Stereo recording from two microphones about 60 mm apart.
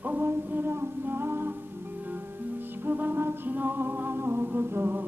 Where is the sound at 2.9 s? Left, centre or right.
Right.